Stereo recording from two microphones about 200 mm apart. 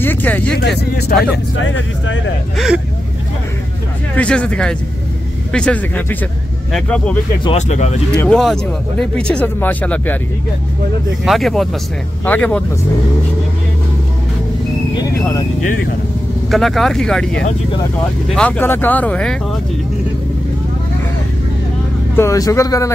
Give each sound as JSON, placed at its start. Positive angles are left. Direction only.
{"t": 0.0, "sound": "vehicle", "side_deg": 10}
{"t": 0.6, "sound": "speech", "side_deg": 55}
{"t": 2.5, "sound": "speech", "side_deg": 0}
{"t": 4.2, "sound": "speech", "side_deg": 5}
{"t": 7.4, "sound": "speech", "side_deg": 35}
{"t": 8.2, "sound": "speech", "side_deg": 0}
{"t": 11.2, "sound": "speech", "side_deg": 0}
{"t": 15.1, "sound": "speech", "side_deg": 15}
{"t": 16.4, "sound": "speech", "side_deg": 0}
{"t": 22.1, "sound": "speech", "side_deg": 15}